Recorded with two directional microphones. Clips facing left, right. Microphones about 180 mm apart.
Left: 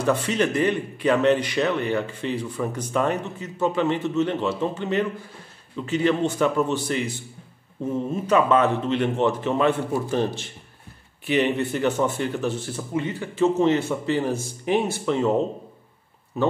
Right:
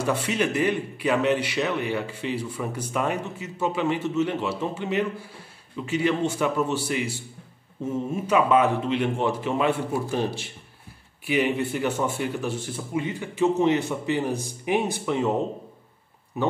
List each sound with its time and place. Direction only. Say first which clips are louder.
0.0 s a man's voice: left 3 dB; 10° right (ahead or behind)
16.3 s a man's voice: left 3 dB; 15° right (ahead or behind)